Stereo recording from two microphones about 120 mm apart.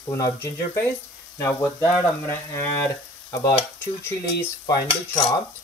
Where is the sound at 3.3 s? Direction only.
30° left (ahead or behind).